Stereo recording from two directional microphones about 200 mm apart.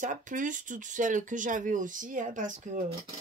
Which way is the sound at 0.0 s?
40° right (ahead or behind).